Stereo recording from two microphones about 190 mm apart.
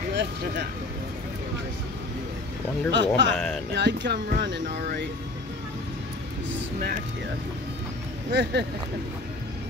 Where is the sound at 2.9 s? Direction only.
70° right (ahead or behind).